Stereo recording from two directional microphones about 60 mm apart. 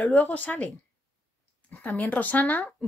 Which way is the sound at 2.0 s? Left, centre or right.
Left.